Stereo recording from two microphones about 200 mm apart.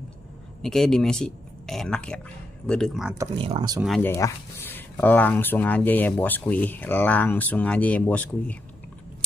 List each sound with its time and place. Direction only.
0.6 s speech: centre (ahead or behind)
3.3 s speech: 25° right (ahead or behind)
4.0 s speech: 10° left (ahead or behind)